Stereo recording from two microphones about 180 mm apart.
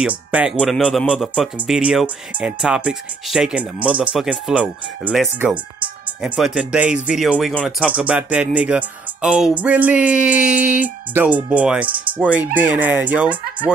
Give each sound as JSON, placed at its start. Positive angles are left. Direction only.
{"t": 0.0, "sound": "speech", "side_deg": -5}